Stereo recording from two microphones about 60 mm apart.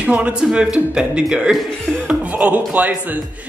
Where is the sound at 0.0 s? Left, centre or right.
Centre.